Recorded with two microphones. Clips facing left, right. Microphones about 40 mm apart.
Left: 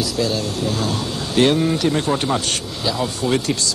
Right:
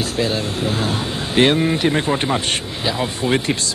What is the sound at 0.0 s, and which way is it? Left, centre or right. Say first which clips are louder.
Speech: even; right.